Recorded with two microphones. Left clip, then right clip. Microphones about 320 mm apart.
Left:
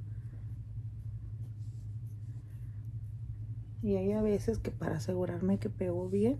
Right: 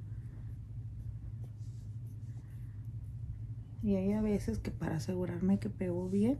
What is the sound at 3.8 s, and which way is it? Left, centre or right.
Speech, centre.